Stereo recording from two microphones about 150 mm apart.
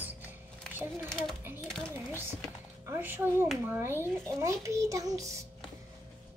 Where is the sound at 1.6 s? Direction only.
5° left (ahead or behind).